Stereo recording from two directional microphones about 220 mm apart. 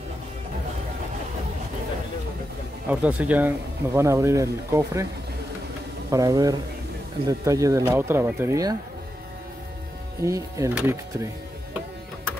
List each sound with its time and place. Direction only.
2.9 s speech: 5° right (ahead or behind)
6.0 s speech: 15° right (ahead or behind)
10.2 s speech: 15° right (ahead or behind)